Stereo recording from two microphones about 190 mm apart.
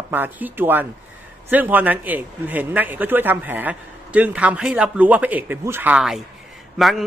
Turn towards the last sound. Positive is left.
turn(degrees=0)  # may be behind; listen again after turning